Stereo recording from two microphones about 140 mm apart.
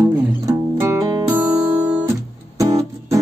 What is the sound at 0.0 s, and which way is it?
Music, 20° right (ahead or behind).